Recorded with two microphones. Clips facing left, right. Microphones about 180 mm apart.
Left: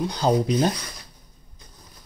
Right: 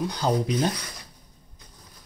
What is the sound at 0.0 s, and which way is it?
Speech, 25° left (ahead or behind).